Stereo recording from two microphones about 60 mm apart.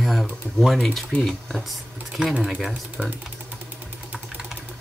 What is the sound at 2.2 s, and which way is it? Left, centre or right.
Speech, centre.